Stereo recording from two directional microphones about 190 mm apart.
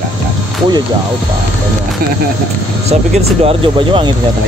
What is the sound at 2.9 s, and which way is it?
Speech, 30° right (ahead or behind).